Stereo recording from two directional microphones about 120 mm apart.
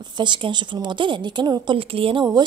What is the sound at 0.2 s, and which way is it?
Speech, 40° right (ahead or behind).